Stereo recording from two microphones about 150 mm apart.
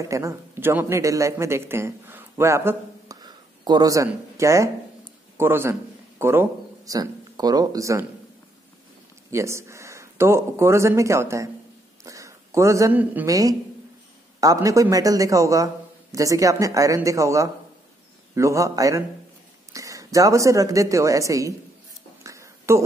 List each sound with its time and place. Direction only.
0.0 s speech: 20° right (ahead or behind)
3.2 s a man's voice: 30° right (ahead or behind)
9.3 s a man's voice: 20° right (ahead or behind)
12.0 s a sound: 20° right (ahead or behind)
13.0 s a woman's voice: 10° right (ahead or behind)
13.3 s a man's voice: 25° right (ahead or behind)
22.2 s a sound: 20° right (ahead or behind)